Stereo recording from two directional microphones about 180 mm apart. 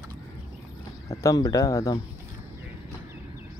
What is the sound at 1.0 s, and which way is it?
Speech, 15° left (ahead or behind).